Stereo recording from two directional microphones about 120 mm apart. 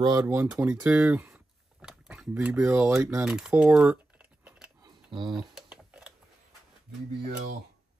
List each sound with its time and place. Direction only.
0.0 s speech: 35° right (ahead or behind)
0.3 s speech: 15° right (ahead or behind)
1.3 s a sound: 5° right (ahead or behind)
2.8 s speech: 25° right (ahead or behind)
3.3 s typing: 10° right (ahead or behind)
4.8 s tick: 40° right (ahead or behind)
5.3 s typing: 5° right (ahead or behind)